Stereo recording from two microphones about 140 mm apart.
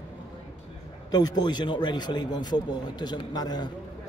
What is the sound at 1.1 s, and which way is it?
A man's voice, 30° left (ahead or behind).